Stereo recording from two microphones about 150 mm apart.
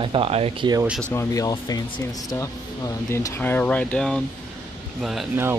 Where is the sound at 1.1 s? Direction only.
20° left (ahead or behind); by 5.3 s centre (ahead or behind).